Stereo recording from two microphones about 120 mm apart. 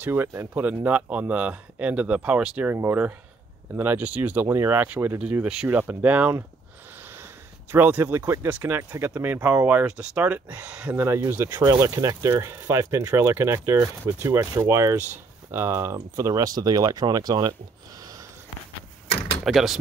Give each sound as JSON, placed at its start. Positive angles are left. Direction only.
{"t": 0.0, "sound": "speech", "side_deg": -20}
{"t": 7.7, "sound": "speech", "side_deg": -15}
{"t": 19.4, "sound": "speech", "side_deg": 0}